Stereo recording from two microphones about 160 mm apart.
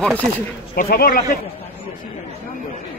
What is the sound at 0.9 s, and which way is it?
Speech, 70° left (ahead or behind).